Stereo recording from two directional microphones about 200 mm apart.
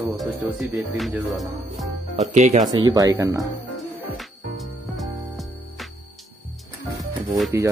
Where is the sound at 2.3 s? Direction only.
35° right (ahead or behind).